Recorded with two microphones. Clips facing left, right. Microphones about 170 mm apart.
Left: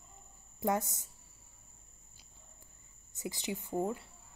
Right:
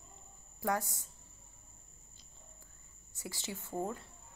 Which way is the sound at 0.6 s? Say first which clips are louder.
Left 2 dB; 20° left (ahead or behind).